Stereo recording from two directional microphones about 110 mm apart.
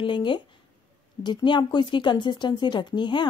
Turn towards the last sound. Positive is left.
turn(degrees=45)  # may be behind; listen again after turning